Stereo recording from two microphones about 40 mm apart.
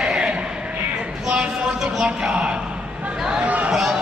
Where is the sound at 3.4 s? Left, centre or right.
Right.